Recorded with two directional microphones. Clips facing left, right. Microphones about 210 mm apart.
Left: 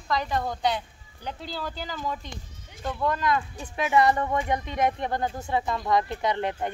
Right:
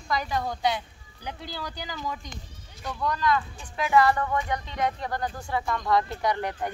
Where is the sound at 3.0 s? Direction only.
20° left (ahead or behind).